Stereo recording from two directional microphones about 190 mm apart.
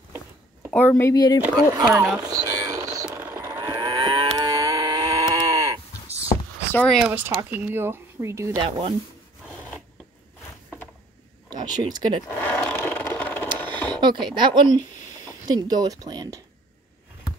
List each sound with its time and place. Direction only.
0.7 s a woman's voice: 10° left (ahead or behind)
1.4 s speech: 10° right (ahead or behind)
2.1 s a sound: 20° right (ahead or behind)
3.1 s livestock: 10° right (ahead or behind)
5.3 s sheep: 15° right (ahead or behind)
6.7 s speech: 10° left (ahead or behind)
7.0 s speech: 10° right (ahead or behind)
8.6 s speech: 25° right (ahead or behind)
9.5 s filing: centre (ahead or behind)
11.5 s speech: 20° right (ahead or behind)
12.4 s vehicle: 10° left (ahead or behind)
13.6 s a sound: 10° left (ahead or behind)
13.8 s speech: 25° right (ahead or behind)